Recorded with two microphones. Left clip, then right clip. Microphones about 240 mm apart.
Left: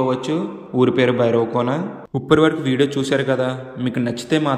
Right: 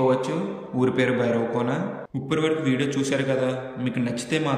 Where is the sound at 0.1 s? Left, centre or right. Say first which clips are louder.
Left 2 dB; centre.